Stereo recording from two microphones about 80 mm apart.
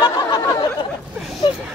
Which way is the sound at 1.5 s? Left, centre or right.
Left.